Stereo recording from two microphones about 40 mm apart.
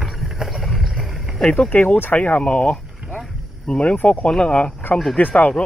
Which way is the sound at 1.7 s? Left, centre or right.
Left.